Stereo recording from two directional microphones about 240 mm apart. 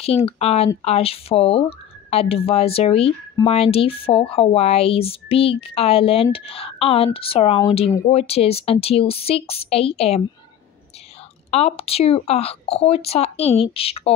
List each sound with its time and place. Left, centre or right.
0.0 s speech: left
11.5 s speech: left